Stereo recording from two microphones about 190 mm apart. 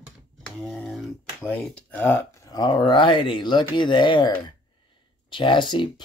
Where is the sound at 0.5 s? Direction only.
Centre (ahead or behind).